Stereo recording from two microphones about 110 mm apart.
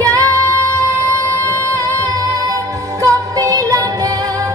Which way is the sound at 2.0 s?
35° right (ahead or behind).